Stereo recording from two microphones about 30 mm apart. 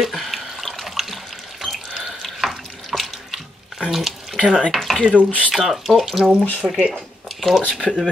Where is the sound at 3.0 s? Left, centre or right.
Centre.